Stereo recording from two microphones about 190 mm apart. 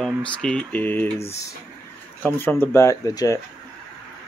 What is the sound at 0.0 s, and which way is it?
Speech, 5° left (ahead or behind).